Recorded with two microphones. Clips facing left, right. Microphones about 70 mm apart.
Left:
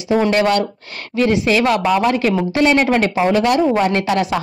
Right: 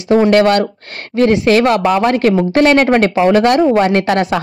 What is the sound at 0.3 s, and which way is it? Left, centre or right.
A woman's voice, right.